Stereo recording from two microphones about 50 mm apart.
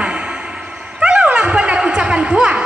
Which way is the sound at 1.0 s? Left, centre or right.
Right.